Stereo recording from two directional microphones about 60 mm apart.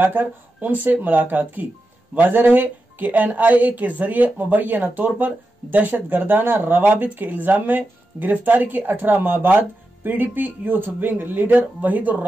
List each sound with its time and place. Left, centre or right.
0.0 s speech: right